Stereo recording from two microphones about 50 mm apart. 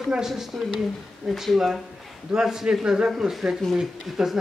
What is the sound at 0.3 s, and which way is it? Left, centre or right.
Speech, centre.